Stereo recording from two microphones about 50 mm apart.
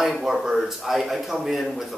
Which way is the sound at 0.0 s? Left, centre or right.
Centre.